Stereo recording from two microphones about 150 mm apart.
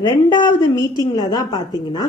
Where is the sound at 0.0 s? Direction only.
30° left (ahead or behind).